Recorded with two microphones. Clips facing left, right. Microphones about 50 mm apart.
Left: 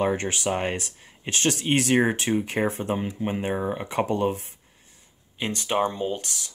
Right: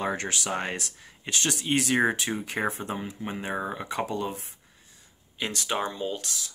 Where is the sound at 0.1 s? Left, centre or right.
Left.